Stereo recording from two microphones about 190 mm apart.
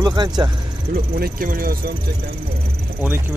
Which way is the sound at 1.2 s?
50° right (ahead or behind).